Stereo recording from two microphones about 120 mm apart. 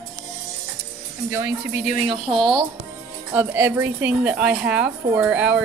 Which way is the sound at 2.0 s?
45° right (ahead or behind).